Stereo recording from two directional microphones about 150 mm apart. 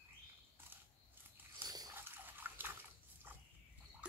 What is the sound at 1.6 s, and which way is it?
Dog, 25° right (ahead or behind).